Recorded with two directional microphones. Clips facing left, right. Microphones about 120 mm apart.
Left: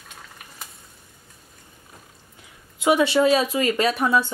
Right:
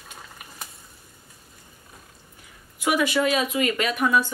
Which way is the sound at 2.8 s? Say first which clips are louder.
Left 4 dB; 25° left (ahead or behind).